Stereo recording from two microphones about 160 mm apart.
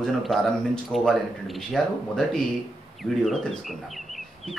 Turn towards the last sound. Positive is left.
turn(degrees=0)  # may be behind; listen again after turning